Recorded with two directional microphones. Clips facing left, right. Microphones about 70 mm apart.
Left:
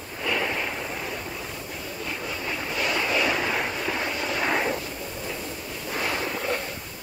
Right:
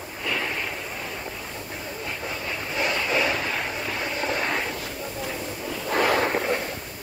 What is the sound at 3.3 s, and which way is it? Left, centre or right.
Vehicle, centre.